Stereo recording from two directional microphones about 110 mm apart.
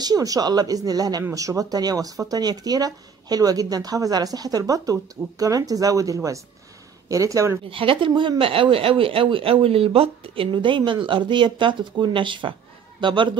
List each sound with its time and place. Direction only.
0.0 s speech: 35° right (ahead or behind)
7.7 s speech: 55° right (ahead or behind)